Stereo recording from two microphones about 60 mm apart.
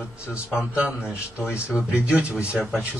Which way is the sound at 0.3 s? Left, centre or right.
Centre.